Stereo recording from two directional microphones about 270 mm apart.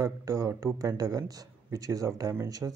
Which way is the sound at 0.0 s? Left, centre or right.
Centre.